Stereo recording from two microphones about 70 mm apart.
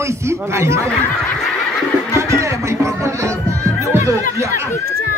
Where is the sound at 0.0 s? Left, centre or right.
Right.